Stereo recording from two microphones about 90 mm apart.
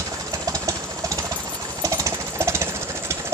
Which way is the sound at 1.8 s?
35° right (ahead or behind).